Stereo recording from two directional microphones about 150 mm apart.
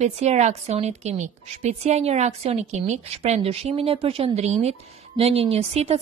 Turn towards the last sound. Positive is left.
turn(degrees=-45)  # may be behind; listen again after turning